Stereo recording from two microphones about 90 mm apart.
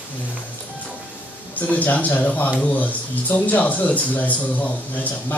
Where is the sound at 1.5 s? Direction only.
20° left (ahead or behind).